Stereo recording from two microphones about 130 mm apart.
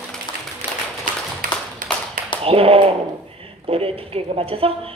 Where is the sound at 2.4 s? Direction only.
45° right (ahead or behind).